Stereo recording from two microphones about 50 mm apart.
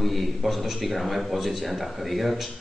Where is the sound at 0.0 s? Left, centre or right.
Centre.